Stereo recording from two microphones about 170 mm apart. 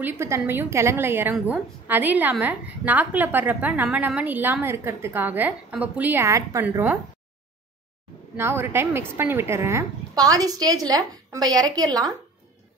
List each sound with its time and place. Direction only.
0.0 s a woman's voice: 15° right (ahead or behind)
8.4 s a woman's voice: 15° right (ahead or behind)